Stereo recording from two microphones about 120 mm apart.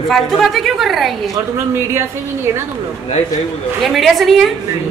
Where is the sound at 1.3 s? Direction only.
20° right (ahead or behind).